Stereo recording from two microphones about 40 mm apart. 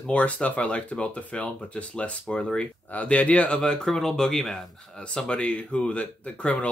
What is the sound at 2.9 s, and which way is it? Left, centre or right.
Speech, left.